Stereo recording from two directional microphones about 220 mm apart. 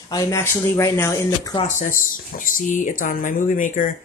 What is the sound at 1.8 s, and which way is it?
Speech, 40° left (ahead or behind).